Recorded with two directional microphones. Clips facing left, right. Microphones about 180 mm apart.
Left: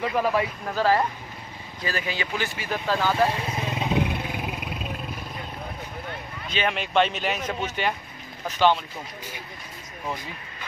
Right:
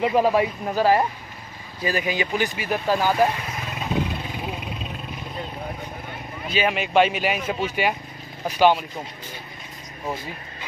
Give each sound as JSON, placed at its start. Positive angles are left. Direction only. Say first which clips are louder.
{"t": 0.0, "sound": "speech", "louder": "right 5 dB", "side_deg": -20}
{"t": 3.4, "sound": "vehicle", "louder": "left 2 dB", "side_deg": 25}
{"t": 6.5, "sound": "speech", "louder": "right 3 dB", "side_deg": -5}